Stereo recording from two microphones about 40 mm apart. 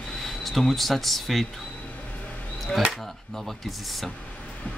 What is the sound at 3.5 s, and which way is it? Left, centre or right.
Speech, centre.